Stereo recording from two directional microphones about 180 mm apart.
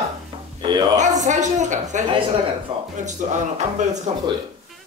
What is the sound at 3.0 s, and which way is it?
A woman's voice, 40° right (ahead or behind).